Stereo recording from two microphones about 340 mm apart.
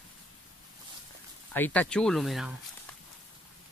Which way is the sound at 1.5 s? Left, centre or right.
Centre.